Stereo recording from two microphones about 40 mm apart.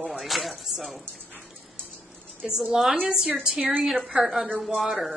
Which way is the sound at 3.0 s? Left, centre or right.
Right.